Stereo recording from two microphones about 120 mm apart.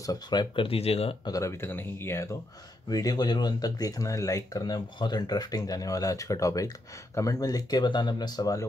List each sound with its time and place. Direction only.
0.0 s speech: 35° left (ahead or behind); by 1.1 s 55° left (ahead or behind)
1.2 s speech: 25° left (ahead or behind)
2.9 s speech: 30° left (ahead or behind)